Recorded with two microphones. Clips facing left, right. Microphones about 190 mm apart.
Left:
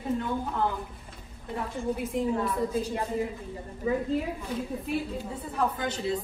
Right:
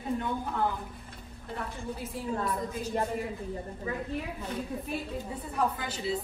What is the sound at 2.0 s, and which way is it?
Speech, 20° left (ahead or behind).